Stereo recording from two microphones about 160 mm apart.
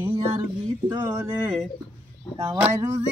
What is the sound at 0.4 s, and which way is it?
Speech, 25° right (ahead or behind).